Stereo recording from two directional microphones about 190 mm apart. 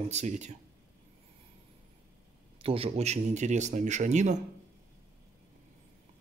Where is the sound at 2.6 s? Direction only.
30° right (ahead or behind).